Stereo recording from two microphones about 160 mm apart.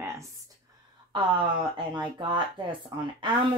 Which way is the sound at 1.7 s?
30° right (ahead or behind).